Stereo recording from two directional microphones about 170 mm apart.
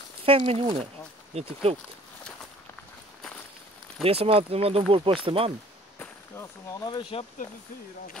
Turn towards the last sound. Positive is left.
turn(degrees=30)  # may be behind; listen again after turning